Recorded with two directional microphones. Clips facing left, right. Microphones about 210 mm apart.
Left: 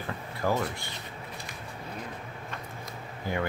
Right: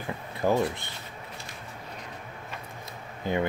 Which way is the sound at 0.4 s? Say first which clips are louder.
Right 4 dB; 20° right (ahead or behind).